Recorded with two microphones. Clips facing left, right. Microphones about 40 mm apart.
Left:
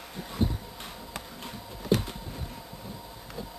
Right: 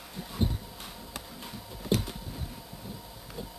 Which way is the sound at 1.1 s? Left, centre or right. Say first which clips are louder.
Left 2 dB; centre.